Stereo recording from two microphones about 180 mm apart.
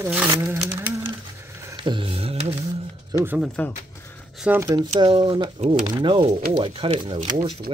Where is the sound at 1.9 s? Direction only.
30° right (ahead or behind).